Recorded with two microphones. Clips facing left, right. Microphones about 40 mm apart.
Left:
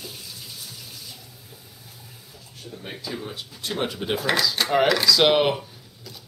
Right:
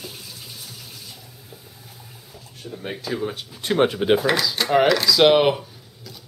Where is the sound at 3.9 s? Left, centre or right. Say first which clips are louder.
Right 8 dB; right.